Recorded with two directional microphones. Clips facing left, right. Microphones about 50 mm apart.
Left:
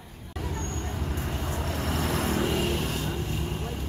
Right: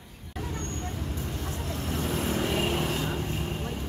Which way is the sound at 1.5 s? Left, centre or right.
Left.